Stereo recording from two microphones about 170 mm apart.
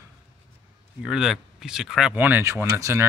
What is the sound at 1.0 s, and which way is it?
Speech, 5° right (ahead or behind).